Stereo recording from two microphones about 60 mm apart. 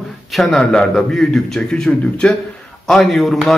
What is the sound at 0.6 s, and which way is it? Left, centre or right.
A man's voice, centre.